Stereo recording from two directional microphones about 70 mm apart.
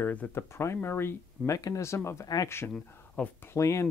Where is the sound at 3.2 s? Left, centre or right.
Centre.